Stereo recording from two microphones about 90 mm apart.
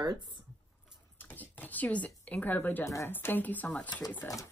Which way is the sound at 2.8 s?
35° left (ahead or behind).